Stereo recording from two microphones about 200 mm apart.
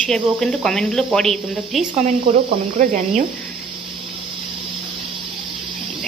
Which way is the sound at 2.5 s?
40° right (ahead or behind).